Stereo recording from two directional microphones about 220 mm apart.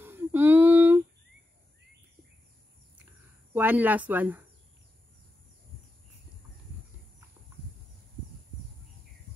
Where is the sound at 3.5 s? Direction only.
10° right (ahead or behind).